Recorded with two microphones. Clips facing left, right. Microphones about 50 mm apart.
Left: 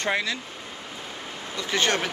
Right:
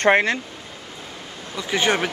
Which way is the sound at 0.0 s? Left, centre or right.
Right.